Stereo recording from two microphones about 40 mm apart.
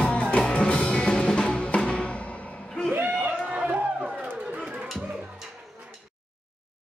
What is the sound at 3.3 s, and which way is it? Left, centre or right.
Run, right.